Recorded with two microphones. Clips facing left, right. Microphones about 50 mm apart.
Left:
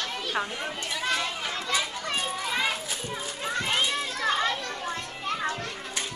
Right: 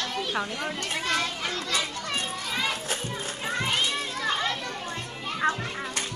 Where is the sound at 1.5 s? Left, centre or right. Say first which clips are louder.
Even; left.